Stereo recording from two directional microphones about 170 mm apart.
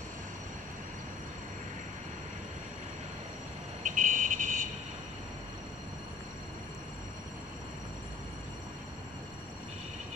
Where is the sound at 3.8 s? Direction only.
50° right (ahead or behind).